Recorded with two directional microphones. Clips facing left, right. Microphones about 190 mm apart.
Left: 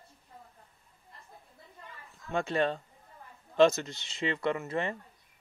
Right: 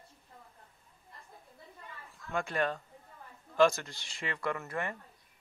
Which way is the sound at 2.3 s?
25° left (ahead or behind).